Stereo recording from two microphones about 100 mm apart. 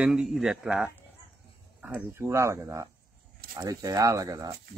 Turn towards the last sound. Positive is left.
turn(degrees=-35)  # may be behind; listen again after turning